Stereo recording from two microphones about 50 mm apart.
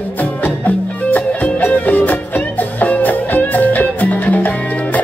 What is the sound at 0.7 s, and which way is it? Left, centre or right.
Music, left.